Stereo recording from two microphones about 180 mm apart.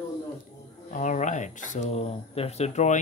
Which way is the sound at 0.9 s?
45° left (ahead or behind).